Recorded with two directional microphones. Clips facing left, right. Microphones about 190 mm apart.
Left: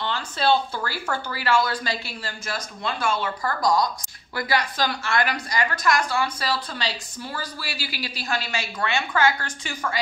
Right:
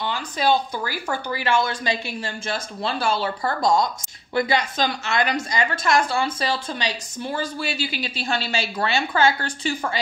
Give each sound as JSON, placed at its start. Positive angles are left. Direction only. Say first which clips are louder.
{"t": 0.0, "sound": "a woman's voice", "louder": "right 1 dB", "side_deg": -15}